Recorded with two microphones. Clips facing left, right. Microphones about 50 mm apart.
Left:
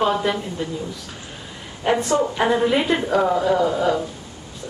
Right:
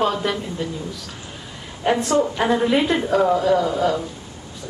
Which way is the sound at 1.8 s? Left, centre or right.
Centre.